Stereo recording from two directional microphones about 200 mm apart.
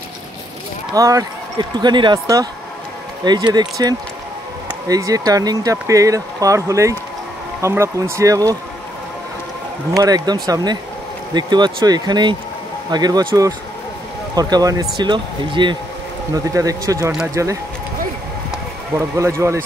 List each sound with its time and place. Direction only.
0.9 s speech: 15° right (ahead or behind)
9.9 s speech: 20° right (ahead or behind)
18.9 s speech: 15° right (ahead or behind)